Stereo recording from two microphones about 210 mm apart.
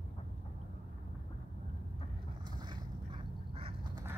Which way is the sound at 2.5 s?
20° right (ahead or behind).